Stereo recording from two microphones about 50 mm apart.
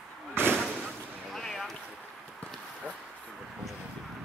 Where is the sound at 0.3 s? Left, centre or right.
Right.